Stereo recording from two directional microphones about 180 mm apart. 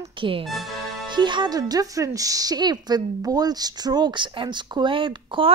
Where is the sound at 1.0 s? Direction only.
25° right (ahead or behind).